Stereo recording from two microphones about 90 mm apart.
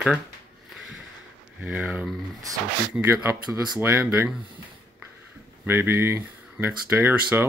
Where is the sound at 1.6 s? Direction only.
15° right (ahead or behind).